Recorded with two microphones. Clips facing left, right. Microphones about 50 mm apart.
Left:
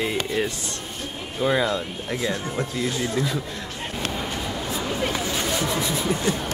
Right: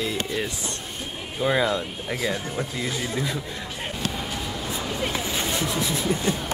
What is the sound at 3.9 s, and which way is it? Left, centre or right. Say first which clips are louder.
Vehicle: left 3 dB; centre.